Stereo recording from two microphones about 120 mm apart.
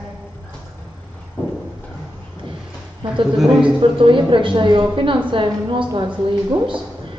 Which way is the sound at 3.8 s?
45° right (ahead or behind).